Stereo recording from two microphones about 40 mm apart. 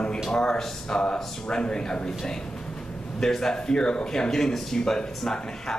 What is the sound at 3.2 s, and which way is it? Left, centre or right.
A man's voice, centre.